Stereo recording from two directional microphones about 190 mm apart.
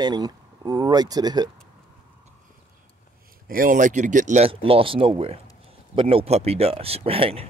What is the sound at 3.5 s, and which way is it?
Speech, 45° right (ahead or behind).